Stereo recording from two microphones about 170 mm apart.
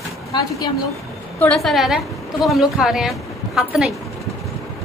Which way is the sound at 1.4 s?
5° left (ahead or behind).